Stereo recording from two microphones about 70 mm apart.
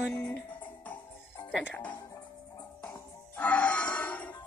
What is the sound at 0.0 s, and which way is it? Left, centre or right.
Music, centre.